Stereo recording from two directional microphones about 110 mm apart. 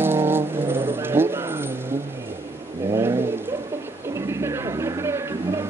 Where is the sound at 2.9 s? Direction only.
20° right (ahead or behind).